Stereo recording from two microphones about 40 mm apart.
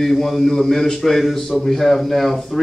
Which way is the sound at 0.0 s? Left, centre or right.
Centre.